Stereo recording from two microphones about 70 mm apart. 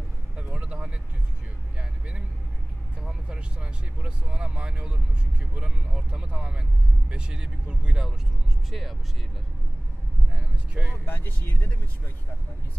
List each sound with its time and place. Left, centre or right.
0.4 s vehicle: centre
5.6 s speech: centre
10.3 s speech: centre
11.1 s speech: left